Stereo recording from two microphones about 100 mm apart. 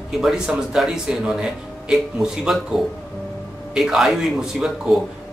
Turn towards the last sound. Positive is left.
turn(degrees=-5)  # may be behind; listen again after turning